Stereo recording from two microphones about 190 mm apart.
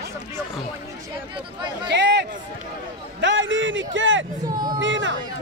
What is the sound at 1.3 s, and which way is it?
Speech, 25° right (ahead or behind).